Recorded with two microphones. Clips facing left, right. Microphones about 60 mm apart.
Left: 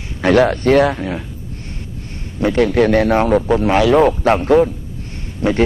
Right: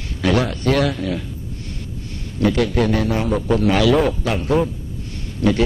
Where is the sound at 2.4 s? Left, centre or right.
Left.